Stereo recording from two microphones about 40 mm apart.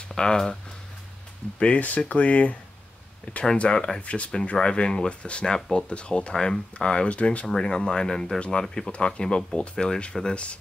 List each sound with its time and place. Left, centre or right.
0.1 s speech: centre
1.6 s speech: left
3.5 s speech: left
6.3 s speech: centre; by 7.4 s left
7.4 s speech: centre